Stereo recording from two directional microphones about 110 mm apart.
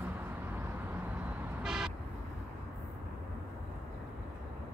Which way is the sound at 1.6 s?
5° right (ahead or behind).